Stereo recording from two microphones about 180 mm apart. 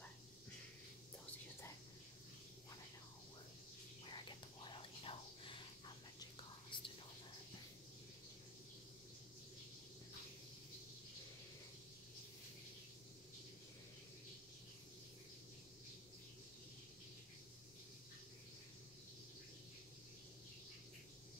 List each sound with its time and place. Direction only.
4.1 s whispering: 25° left (ahead or behind)
6.7 s whispering: 25° left (ahead or behind)